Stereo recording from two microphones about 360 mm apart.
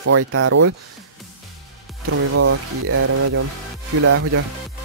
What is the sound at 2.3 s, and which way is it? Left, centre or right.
Speech, right.